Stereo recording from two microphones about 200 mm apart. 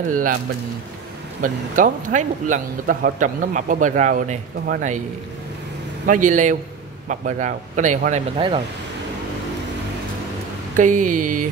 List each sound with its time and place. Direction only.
1.4 s a man's voice: 40° right (ahead or behind)
6.0 s a man's voice: 40° right (ahead or behind)
10.8 s a man's voice: 40° right (ahead or behind)